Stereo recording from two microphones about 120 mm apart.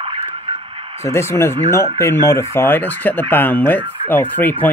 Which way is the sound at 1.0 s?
20° left (ahead or behind).